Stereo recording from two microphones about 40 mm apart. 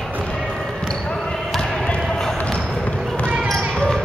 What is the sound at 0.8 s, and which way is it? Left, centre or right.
Basketball bounce, left.